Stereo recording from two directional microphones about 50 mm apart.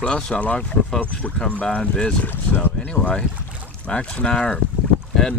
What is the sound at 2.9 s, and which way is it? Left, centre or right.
Speech, centre.